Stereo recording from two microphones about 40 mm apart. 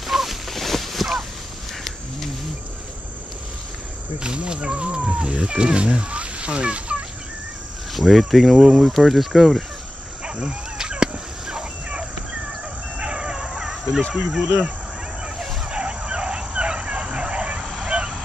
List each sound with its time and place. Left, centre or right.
0.0 s a sound: centre
4.2 s speech: right
7.9 s speech: centre
10.2 s a sound: centre
13.0 s music: right
13.3 s a sound: centre
14.1 s speech: centre
15.7 s dog: centre
17.6 s vehicle: centre
17.8 s vehicle: centre